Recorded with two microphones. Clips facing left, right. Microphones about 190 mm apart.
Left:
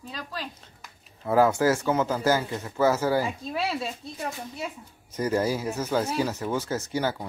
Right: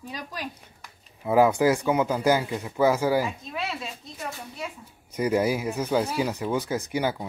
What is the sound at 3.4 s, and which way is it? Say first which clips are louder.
Speech: left 4 dB; 35° left (ahead or behind).